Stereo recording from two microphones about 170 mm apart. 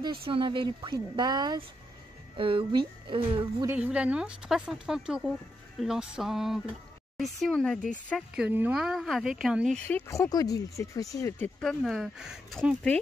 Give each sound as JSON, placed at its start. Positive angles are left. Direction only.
{"t": 0.0, "sound": "speech", "side_deg": -30}
{"t": 3.6, "sound": "speech", "side_deg": -10}
{"t": 8.4, "sound": "speech", "side_deg": -10}
{"t": 9.8, "sound": "speech", "side_deg": 15}
{"t": 11.8, "sound": "speech", "side_deg": 0}